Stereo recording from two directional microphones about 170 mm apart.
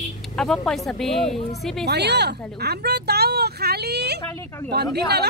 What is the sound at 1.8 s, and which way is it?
Speech, 75° right (ahead or behind).